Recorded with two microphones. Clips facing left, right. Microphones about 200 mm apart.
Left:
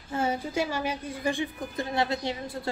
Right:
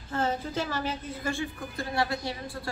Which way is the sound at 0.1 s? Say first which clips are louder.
Left 1 dB; 10° left (ahead or behind).